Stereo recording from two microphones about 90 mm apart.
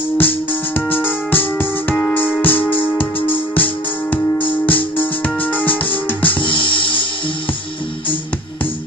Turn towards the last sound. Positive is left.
turn(degrees=70)  # may be behind; listen again after turning